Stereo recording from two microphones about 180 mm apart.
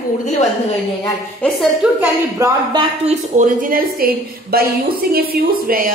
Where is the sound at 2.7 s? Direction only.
40° right (ahead or behind).